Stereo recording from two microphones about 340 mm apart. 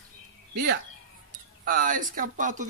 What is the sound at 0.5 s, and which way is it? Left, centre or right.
Speech, right.